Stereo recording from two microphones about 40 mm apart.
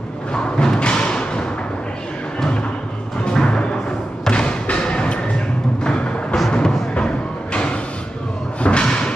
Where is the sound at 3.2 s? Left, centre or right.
Left.